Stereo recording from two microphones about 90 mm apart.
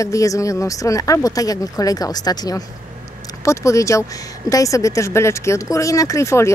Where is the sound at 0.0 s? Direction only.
35° left (ahead or behind).